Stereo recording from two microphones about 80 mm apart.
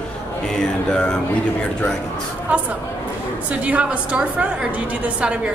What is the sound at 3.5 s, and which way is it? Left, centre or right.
A woman's voice, centre.